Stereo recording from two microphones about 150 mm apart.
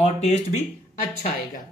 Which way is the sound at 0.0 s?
45° left (ahead or behind).